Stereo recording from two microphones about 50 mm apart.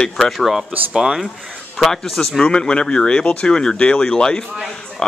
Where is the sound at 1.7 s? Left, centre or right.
Centre.